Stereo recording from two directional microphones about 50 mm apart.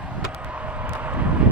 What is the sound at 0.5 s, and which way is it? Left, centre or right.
Vehicle, right.